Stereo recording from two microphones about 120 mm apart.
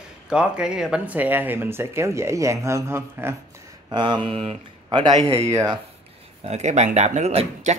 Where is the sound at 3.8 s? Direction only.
40° right (ahead or behind).